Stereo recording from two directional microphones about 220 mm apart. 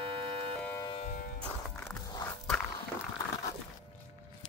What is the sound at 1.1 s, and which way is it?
Music, 40° left (ahead or behind).